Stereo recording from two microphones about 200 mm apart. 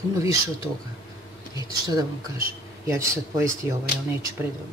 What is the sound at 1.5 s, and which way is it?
Speech, 20° right (ahead or behind).